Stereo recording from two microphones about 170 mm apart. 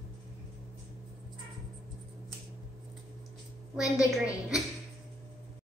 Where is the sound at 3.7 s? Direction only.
20° left (ahead or behind).